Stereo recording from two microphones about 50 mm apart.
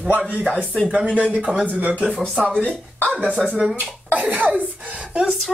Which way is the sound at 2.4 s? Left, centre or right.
Left.